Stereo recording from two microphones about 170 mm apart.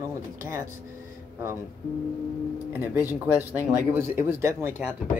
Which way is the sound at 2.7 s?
10° right (ahead or behind).